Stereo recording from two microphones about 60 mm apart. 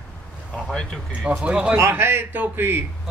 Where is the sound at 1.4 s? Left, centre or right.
Centre.